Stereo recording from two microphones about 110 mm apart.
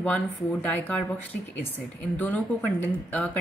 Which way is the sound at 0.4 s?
10° left (ahead or behind).